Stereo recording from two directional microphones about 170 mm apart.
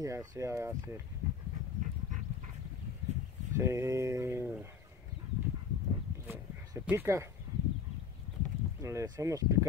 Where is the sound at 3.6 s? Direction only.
15° right (ahead or behind).